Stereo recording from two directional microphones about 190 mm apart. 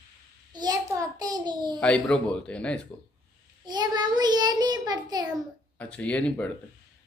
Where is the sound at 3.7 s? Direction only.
20° right (ahead or behind).